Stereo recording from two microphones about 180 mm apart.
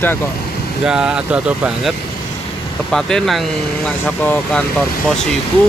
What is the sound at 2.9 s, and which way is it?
Speech, 5° left (ahead or behind).